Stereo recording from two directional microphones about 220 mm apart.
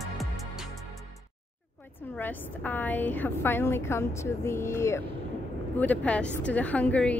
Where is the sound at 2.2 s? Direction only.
5° left (ahead or behind).